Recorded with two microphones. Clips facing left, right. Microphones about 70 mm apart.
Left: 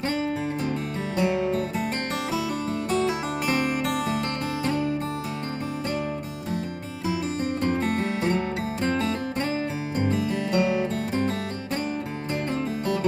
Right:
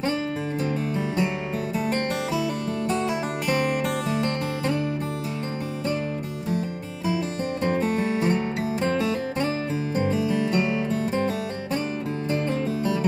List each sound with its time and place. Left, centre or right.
7.6 s music: right
9.9 s music: right